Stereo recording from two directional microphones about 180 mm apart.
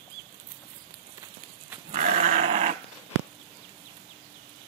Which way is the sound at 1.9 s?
45° right (ahead or behind).